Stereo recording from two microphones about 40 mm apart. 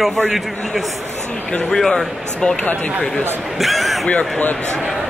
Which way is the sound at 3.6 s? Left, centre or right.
Centre.